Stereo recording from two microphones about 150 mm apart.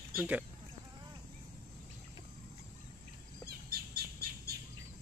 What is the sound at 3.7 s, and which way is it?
Bird, 90° right.